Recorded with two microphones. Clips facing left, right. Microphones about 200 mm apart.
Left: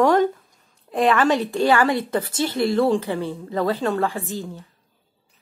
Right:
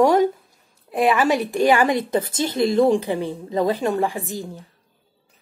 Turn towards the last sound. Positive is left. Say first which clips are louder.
# even
turn(degrees=-15)  # may be behind; listen again after turning